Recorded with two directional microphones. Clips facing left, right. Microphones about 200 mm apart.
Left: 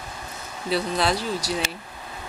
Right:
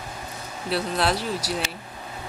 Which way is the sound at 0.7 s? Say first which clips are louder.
Left 1 dB; 5° right (ahead or behind).